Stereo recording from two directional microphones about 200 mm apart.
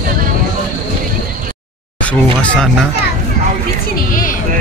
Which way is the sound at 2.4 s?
5° left (ahead or behind).